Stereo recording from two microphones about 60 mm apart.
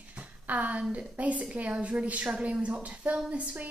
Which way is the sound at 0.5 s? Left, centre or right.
Right.